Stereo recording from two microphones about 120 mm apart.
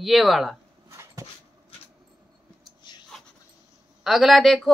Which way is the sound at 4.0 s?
Centre (ahead or behind).